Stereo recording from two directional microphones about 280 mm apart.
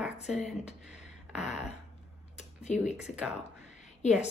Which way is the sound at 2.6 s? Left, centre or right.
Left.